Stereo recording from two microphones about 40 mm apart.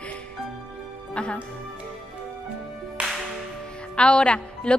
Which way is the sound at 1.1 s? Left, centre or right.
Left.